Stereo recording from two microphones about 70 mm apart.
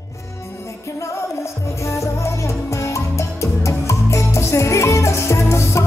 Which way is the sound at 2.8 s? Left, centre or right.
Left.